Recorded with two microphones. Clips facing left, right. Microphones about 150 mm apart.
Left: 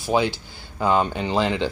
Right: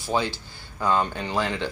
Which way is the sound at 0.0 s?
15° left (ahead or behind).